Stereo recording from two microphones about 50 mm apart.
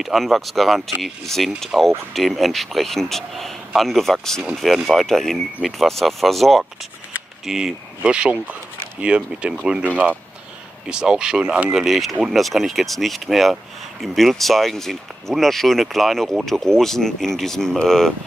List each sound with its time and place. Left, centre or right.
0.0 s a man's voice: centre
7.4 s speech: centre
8.0 s speech: right
10.9 s speech: centre
11.7 s a man's voice: centre